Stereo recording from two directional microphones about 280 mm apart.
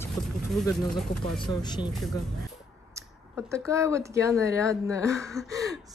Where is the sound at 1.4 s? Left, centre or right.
Centre.